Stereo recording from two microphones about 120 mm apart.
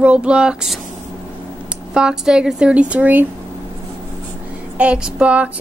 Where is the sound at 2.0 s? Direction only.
5° right (ahead or behind).